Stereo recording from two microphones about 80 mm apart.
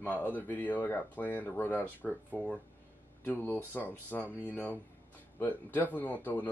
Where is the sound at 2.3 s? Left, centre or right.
Centre.